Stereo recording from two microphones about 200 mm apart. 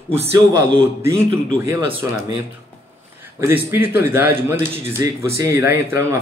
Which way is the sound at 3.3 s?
10° right (ahead or behind).